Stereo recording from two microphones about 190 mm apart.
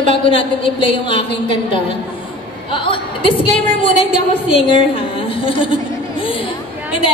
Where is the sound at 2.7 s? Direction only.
25° left (ahead or behind).